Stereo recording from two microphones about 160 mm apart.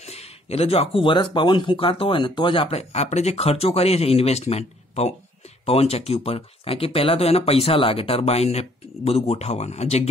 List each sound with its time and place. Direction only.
0.0 s speech: 40° left (ahead or behind)